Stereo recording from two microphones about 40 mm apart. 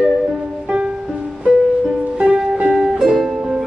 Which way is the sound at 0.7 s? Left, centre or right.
Right.